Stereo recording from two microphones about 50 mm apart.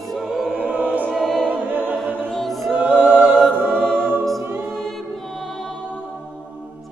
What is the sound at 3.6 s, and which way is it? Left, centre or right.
Music, centre.